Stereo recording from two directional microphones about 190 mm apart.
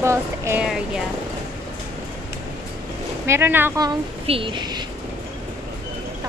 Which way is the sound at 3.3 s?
10° right (ahead or behind).